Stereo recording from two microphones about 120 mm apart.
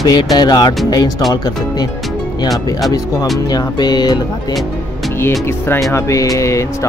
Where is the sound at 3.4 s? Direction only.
35° left (ahead or behind).